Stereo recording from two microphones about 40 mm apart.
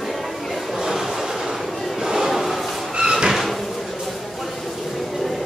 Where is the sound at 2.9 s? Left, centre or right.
Right.